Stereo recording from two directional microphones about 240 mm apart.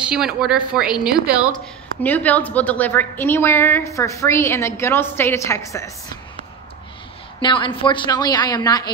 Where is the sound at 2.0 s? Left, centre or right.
Centre.